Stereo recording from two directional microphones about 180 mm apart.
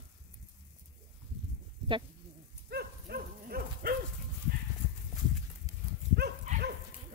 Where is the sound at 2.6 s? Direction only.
60° right (ahead or behind).